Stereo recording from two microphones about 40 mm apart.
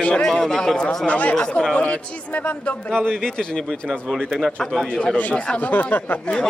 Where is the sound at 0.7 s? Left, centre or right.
Left.